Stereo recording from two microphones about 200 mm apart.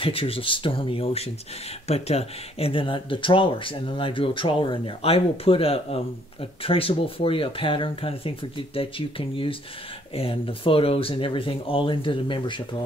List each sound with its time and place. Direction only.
0.0 s speech: 30° left (ahead or behind)